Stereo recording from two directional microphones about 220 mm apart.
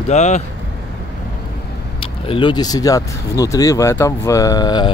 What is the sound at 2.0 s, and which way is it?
Speech, 25° left (ahead or behind).